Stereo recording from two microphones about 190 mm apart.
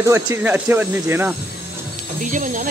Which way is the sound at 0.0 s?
15° right (ahead or behind).